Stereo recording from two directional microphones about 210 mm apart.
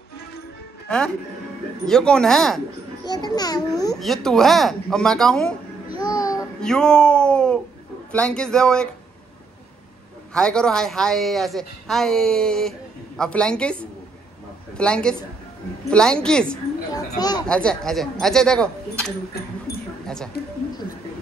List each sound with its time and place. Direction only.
0.8 s speech: 5° left (ahead or behind)
3.1 s a child's voice: 20° left (ahead or behind)
4.0 s speech: centre (ahead or behind)
6.0 s child singing: 15° left (ahead or behind)
6.6 s speech: 5° left (ahead or behind)
10.3 s speech: 5° left (ahead or behind)
16.9 s speech: 20° left (ahead or behind)
17.5 s speech: 5° left (ahead or behind)
19.7 s a sound: 45° left (ahead or behind)